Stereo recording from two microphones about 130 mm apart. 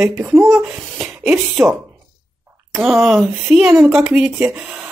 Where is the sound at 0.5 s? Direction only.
5° right (ahead or behind).